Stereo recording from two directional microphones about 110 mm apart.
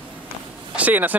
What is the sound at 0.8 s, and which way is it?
Speech, 15° right (ahead or behind).